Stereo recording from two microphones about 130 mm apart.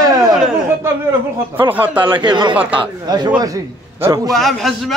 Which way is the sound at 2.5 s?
10° right (ahead or behind).